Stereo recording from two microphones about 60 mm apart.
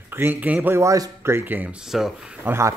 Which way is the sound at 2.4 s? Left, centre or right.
Right.